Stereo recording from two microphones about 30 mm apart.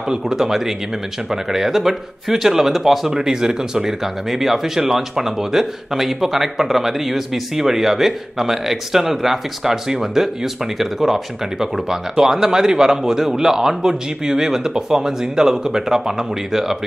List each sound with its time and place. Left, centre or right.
0.1 s speech: centre
3.1 s speech: right